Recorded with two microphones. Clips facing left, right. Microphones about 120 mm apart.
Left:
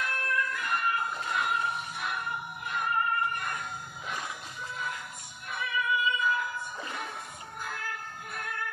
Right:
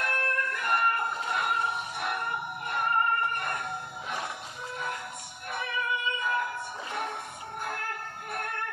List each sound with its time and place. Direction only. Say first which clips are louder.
0.0 s music: right 1 dB; 60° right (ahead or behind)
4.7 s music: right 3 dB; 60° right (ahead or behind)